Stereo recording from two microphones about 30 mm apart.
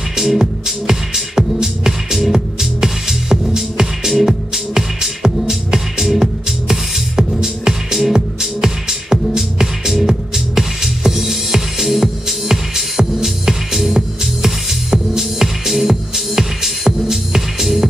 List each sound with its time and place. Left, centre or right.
0.1 s music: centre